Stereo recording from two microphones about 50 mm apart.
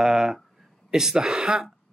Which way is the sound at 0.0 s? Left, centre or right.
Centre.